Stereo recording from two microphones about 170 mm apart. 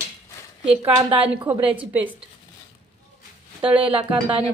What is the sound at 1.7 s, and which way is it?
Speech, 10° right (ahead or behind).